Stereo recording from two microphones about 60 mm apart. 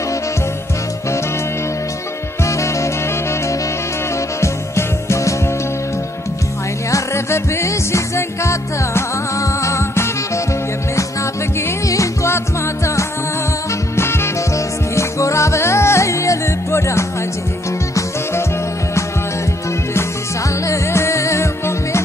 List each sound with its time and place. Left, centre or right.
2.4 s music: left
4.4 s music: left
6.9 s music: left
11.9 s music: left
13.9 s music: left
15.0 s music: left
20.6 s music: left